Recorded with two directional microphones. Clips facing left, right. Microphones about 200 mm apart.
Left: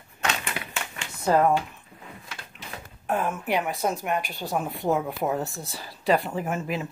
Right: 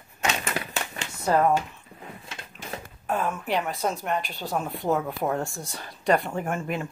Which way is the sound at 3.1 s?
10° left (ahead or behind).